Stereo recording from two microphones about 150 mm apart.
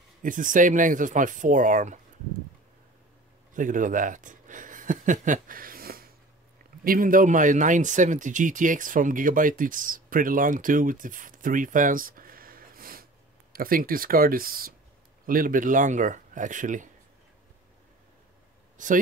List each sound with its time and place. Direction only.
0.2 s speech: 60° right (ahead or behind)
3.5 s speech: 60° right (ahead or behind)
18.8 s speech: 60° right (ahead or behind)